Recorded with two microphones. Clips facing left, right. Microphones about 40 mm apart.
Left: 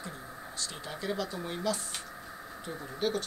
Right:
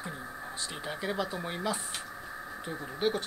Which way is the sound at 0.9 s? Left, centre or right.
Centre.